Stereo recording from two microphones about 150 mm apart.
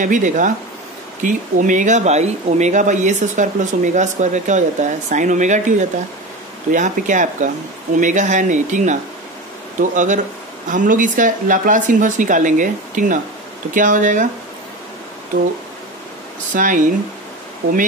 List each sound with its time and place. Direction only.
0.0 s speech: 60° right (ahead or behind)
16.5 s speech: 60° right (ahead or behind)